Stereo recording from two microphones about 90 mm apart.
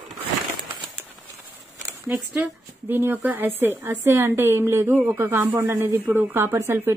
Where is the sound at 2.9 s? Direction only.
25° right (ahead or behind).